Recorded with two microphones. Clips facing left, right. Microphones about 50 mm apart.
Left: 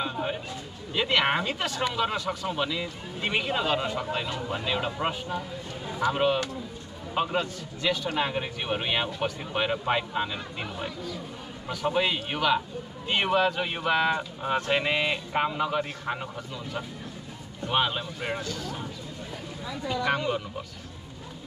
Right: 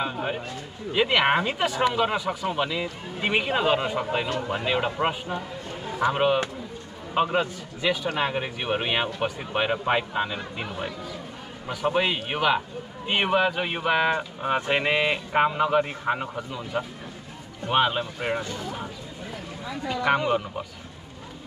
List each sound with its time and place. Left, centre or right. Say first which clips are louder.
0.0 s a sound: right 2 dB; centre
0.9 s a man's voice: right 4 dB; centre
18.4 s speech: right 2 dB; right
19.7 s speech: right 4 dB; centre